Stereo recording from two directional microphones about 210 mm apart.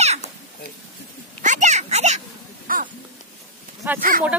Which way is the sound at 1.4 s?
35° right (ahead or behind).